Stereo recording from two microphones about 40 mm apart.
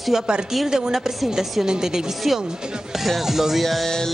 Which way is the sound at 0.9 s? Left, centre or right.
Centre.